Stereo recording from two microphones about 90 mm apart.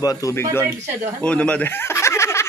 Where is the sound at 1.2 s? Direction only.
15° left (ahead or behind).